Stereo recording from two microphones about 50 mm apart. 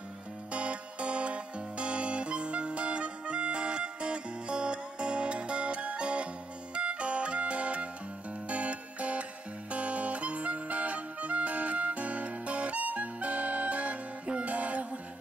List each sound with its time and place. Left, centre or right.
0.5 s music: right